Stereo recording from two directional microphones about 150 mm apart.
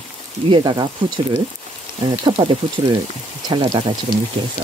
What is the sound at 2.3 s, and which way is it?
Speech, 25° right (ahead or behind).